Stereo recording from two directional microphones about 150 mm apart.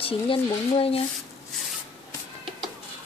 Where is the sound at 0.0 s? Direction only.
40° left (ahead or behind).